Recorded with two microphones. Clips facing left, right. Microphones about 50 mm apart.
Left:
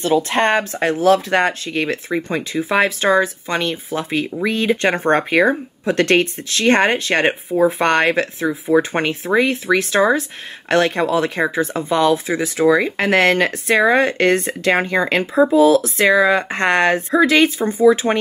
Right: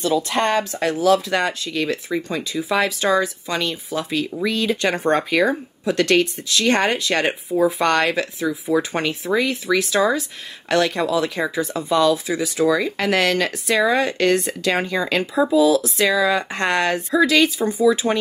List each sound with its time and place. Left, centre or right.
0.0 s speech: left